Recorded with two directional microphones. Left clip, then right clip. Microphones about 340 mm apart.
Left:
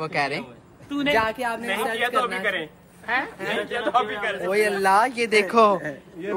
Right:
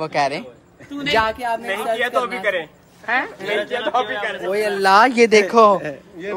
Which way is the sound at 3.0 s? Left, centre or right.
Right.